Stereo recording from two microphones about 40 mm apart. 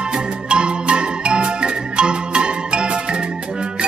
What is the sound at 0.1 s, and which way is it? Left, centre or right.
Music, right.